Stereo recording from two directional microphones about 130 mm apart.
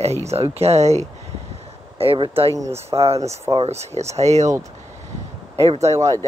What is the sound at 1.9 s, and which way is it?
Speech, 45° right (ahead or behind).